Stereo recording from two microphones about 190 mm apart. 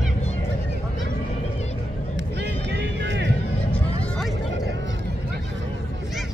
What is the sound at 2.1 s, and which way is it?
Music, 65° right (ahead or behind).